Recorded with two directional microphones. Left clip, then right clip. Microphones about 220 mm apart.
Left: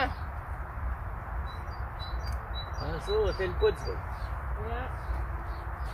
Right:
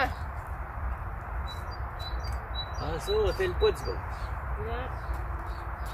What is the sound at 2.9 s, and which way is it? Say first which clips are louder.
Speech: right 1 dB; 55° right (ahead or behind).